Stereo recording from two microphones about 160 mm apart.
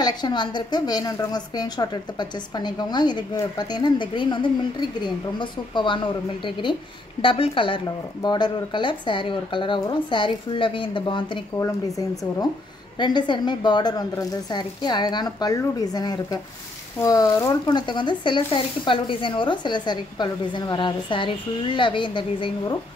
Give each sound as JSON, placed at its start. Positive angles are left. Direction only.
{"t": 0.0, "sound": "a woman's voice", "side_deg": 25}